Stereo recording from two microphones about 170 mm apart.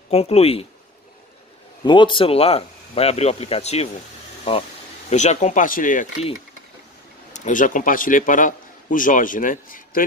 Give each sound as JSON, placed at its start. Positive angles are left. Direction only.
{"t": 0.1, "sound": "speech", "side_deg": 35}
{"t": 1.8, "sound": "speech", "side_deg": 30}
{"t": 5.1, "sound": "a man's voice", "side_deg": 45}
{"t": 7.3, "sound": "a man's voice", "side_deg": 50}